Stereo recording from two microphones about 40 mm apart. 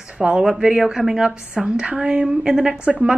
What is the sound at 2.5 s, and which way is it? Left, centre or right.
Speech, centre.